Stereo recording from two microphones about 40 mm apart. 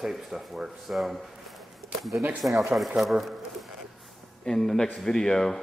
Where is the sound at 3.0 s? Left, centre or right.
Centre.